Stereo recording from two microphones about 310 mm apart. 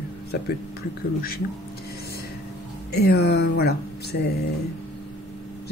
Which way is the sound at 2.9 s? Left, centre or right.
Left.